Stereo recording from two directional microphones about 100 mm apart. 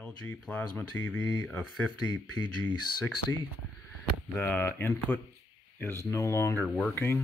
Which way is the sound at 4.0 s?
15° left (ahead or behind).